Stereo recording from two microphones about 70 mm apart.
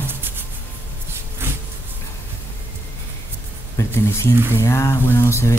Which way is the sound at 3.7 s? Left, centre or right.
Left.